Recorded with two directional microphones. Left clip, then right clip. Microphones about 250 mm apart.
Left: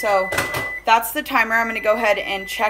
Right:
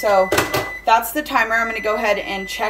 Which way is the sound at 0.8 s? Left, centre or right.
Centre.